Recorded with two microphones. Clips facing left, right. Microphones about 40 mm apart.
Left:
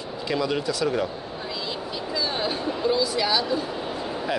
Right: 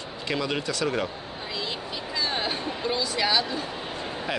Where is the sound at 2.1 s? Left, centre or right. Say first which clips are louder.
Left 1 dB; right.